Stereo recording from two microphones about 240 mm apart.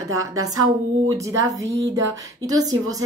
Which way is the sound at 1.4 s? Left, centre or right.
Centre.